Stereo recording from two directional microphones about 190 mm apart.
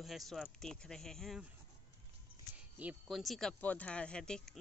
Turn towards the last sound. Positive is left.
turn(degrees=5)  # may be behind; listen again after turning